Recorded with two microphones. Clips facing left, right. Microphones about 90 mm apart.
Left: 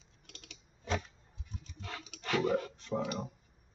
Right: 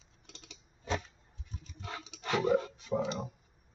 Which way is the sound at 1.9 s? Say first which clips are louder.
Right 1 dB; 20° right (ahead or behind).